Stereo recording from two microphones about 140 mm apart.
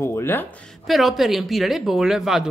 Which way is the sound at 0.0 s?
15° left (ahead or behind).